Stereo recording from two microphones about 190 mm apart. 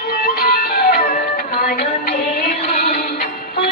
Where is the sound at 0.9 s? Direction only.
50° left (ahead or behind).